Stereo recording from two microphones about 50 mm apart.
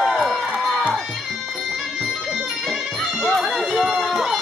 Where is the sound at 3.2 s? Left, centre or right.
Centre.